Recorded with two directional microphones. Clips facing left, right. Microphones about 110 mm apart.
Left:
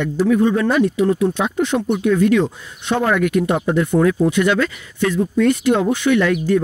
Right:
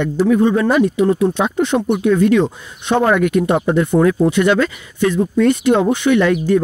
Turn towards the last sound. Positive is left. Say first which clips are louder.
# right 2 dB
turn(degrees=-25)  # may be behind; listen again after turning